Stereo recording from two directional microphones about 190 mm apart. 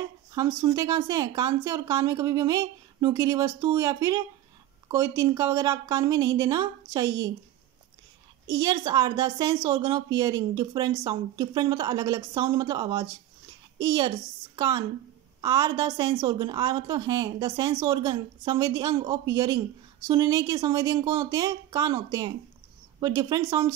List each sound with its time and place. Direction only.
0.3 s speech: 15° right (ahead or behind)
8.5 s a woman's voice: 20° right (ahead or behind)